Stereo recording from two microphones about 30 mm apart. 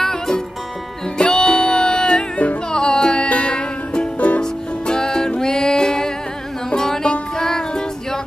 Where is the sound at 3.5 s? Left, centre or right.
Left.